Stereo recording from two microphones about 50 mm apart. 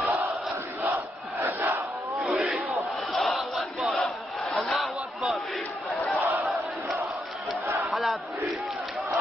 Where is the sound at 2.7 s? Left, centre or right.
Centre.